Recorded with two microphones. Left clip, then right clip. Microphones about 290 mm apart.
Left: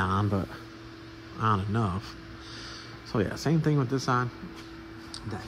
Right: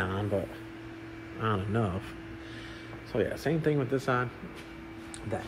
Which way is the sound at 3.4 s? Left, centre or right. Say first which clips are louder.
Even; left.